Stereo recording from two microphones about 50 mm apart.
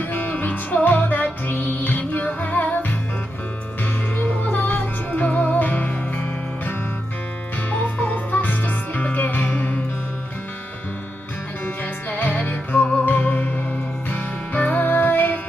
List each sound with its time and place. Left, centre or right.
0.0 s music: left
4.4 s music: left
7.7 s music: left
11.6 s music: left
14.0 s music: left